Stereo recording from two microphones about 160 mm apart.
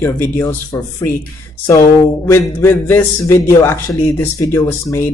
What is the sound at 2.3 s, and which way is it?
A man's voice, 15° left (ahead or behind).